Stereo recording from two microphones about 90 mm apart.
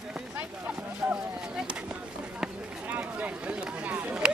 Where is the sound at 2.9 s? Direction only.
15° right (ahead or behind).